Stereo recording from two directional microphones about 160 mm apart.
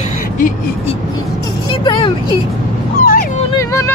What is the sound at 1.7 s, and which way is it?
Speech, 30° left (ahead or behind).